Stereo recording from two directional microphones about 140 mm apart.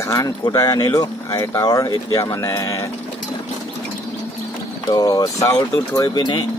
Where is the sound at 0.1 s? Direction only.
25° left (ahead or behind).